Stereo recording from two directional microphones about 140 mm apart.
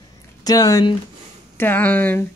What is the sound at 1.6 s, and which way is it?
Speech, 15° left (ahead or behind).